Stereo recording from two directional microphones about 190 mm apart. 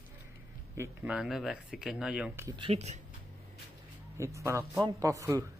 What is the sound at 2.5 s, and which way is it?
Speech, 25° right (ahead or behind).